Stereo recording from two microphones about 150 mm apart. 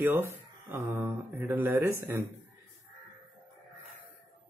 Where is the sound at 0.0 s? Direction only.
15° right (ahead or behind).